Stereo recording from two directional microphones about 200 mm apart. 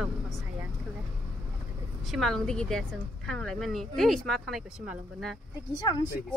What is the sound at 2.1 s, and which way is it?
Speech, centre (ahead or behind).